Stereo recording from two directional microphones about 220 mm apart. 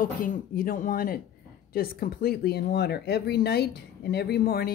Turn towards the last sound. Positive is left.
turn(degrees=45)  # may be behind; listen again after turning